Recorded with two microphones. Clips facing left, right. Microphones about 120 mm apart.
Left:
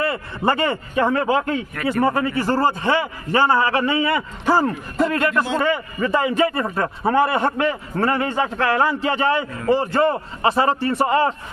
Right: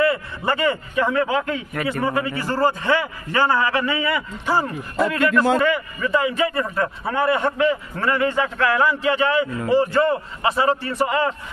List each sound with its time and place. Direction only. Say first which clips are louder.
0.0 s a man's voice: right 1 dB; 35° left (ahead or behind)